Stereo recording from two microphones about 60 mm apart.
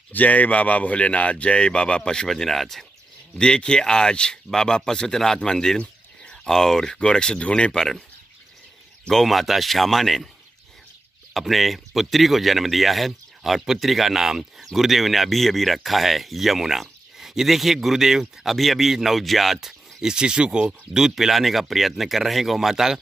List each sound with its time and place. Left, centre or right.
0.1 s speech: left; by 8.0 s centre
9.1 s speech: centre
11.3 s speech: centre